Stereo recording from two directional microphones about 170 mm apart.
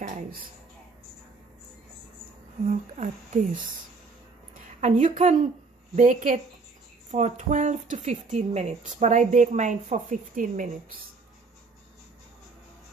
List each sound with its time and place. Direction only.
0.0 s speech: 50° right (ahead or behind)
2.6 s speech: 45° right (ahead or behind)
4.7 s speech: 45° right (ahead or behind)